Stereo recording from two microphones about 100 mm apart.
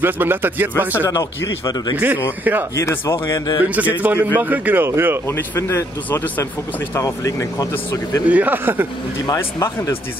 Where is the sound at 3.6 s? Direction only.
15° right (ahead or behind).